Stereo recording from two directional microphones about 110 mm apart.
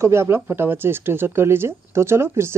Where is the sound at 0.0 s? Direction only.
25° right (ahead or behind).